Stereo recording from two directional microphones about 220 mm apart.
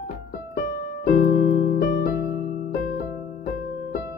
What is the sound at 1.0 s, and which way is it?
Music, 45° left (ahead or behind).